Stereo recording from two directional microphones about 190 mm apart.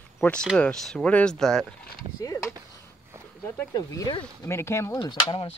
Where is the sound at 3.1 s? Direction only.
15° right (ahead or behind).